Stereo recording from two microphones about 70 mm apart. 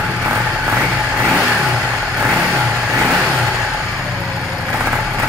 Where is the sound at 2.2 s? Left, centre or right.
Centre.